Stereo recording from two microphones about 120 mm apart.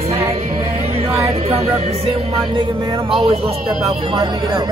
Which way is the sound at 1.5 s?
60° right (ahead or behind).